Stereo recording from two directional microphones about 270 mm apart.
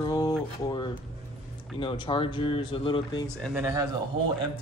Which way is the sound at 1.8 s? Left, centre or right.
Centre.